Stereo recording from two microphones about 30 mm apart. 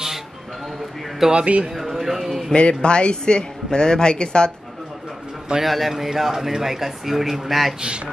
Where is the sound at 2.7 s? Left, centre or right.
Left.